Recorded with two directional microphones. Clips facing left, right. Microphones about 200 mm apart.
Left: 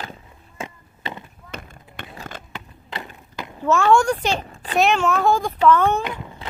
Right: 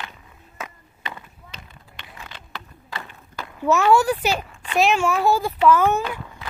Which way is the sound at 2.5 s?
20° left (ahead or behind).